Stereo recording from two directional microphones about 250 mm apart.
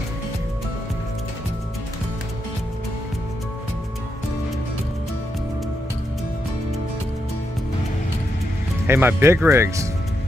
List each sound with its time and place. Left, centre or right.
8.8 s speech: centre